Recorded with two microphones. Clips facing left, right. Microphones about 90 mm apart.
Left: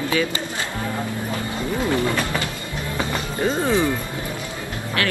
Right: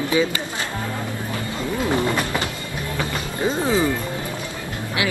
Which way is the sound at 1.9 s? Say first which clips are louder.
Right 1 dB; 20° right (ahead or behind).